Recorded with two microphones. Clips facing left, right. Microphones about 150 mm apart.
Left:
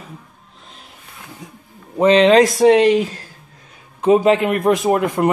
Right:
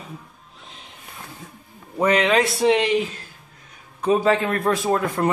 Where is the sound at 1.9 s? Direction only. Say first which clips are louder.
Left 7 dB; 25° left (ahead or behind); by 2.9 s 45° left (ahead or behind).